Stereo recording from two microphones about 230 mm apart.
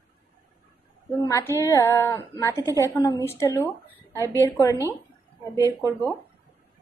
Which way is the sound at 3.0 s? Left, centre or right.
Centre.